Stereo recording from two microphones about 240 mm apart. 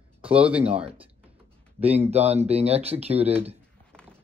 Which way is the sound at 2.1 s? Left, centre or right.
Right.